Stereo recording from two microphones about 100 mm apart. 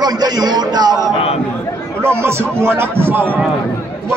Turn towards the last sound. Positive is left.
turn(degrees=-20)  # may be behind; listen again after turning